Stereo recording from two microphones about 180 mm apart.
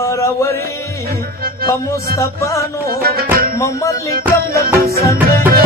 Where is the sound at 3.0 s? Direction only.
55° right (ahead or behind).